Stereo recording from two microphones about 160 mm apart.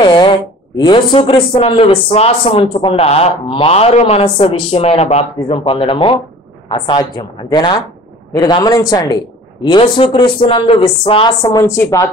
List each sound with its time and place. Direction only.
0.0 s a man's voice: 30° left (ahead or behind)